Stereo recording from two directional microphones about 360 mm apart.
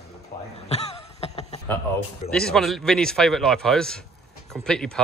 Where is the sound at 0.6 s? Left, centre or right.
Centre.